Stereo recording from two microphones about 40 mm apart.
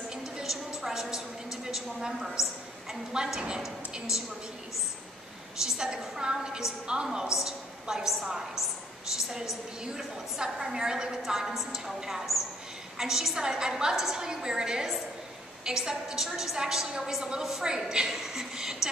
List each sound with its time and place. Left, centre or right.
0.1 s a sound: centre
1.7 s a woman's voice: centre
5.6 s a woman's voice: centre
13.9 s a woman's voice: centre
14.2 s a woman's voice: centre